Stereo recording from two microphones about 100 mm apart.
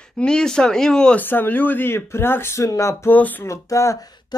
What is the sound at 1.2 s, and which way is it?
Speech, 20° left (ahead or behind).